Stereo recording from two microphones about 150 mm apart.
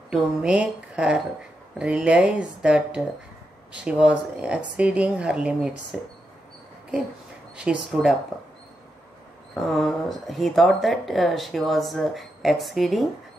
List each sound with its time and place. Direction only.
0.1 s speech: 5° right (ahead or behind)
7.5 s speech: 5° right (ahead or behind)
9.7 s speech: centre (ahead or behind)